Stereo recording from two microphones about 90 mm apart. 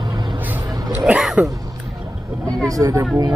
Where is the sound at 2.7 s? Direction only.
40° right (ahead or behind).